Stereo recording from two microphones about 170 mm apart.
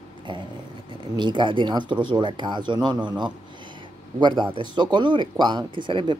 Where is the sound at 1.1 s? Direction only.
25° right (ahead or behind).